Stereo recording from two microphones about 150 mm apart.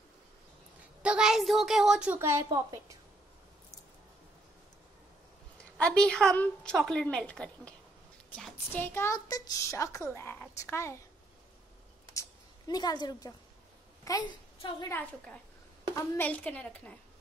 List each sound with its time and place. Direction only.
1.0 s speech: 5° right (ahead or behind)
2.1 s a woman's voice: 20° right (ahead or behind)
5.6 s a woman's voice: 5° left (ahead or behind)
12.1 s a sound: 25° left (ahead or behind)
14.0 s a woman's voice: 25° left (ahead or behind)
14.6 s a woman's voice: 35° left (ahead or behind)
14.9 s a woman's voice: 10° left (ahead or behind)